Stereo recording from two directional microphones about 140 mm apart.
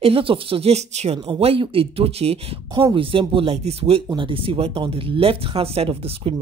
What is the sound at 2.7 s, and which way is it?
Speech, 35° right (ahead or behind).